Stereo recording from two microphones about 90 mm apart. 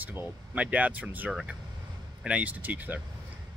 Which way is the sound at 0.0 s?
20° right (ahead or behind).